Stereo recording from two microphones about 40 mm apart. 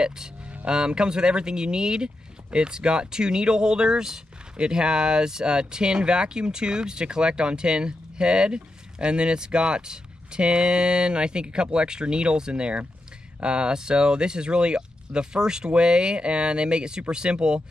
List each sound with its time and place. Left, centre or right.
0.7 s speech: right